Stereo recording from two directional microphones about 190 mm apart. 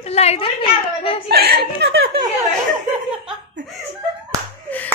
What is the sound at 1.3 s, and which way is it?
Speech, 55° right (ahead or behind).